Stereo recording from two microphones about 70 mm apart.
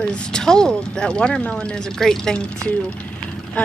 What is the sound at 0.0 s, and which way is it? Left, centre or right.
A woman's voice, centre.